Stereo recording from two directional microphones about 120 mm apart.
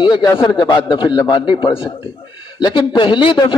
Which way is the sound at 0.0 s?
40° left (ahead or behind).